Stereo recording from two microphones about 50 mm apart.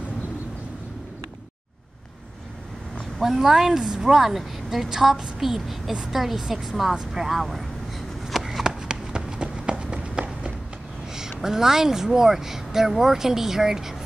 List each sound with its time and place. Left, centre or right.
3.2 s speech: centre
8.3 s run: centre
11.1 s speech: centre